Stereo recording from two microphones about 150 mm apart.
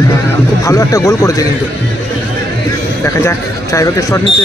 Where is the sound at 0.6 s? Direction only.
20° left (ahead or behind).